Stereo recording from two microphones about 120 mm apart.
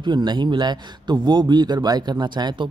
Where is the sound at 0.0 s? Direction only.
40° right (ahead or behind).